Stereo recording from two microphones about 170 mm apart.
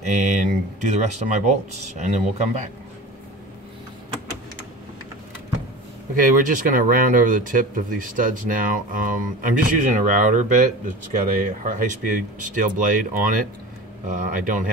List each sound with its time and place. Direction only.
0.0 s speech: 45° right (ahead or behind)
6.1 s speech: 50° right (ahead or behind)